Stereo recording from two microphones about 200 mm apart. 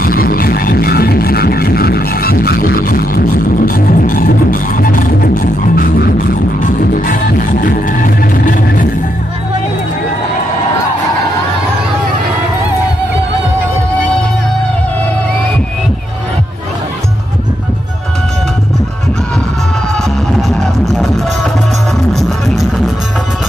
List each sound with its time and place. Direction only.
0.0 s music: 45° left (ahead or behind)
20.4 s music: centre (ahead or behind)